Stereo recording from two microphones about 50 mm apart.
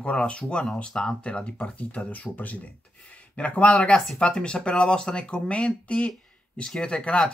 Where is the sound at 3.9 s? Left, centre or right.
Centre.